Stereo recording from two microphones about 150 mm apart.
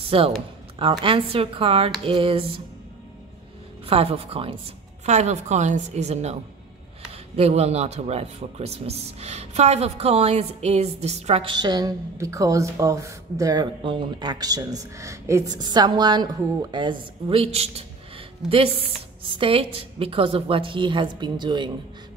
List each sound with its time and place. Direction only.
0.1 s a woman's voice: 35° right (ahead or behind)
3.8 s a woman's voice: 40° right (ahead or behind)
5.0 s speech: 50° right (ahead or behind)
7.3 s speech: 45° right (ahead or behind)
11.5 s a woman's voice: 25° right (ahead or behind)